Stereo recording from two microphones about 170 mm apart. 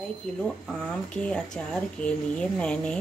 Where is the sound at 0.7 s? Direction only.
5° left (ahead or behind).